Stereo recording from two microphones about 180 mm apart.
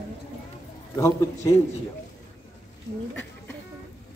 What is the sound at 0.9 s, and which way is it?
Speech, 15° left (ahead or behind).